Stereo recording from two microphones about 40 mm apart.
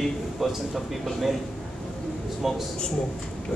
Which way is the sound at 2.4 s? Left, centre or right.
Centre.